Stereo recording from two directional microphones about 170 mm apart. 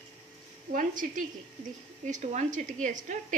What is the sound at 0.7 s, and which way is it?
A woman's voice, 50° right (ahead or behind).